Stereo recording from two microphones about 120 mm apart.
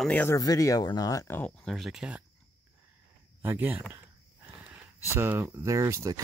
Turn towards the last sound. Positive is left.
turn(degrees=-25)  # may be behind; listen again after turning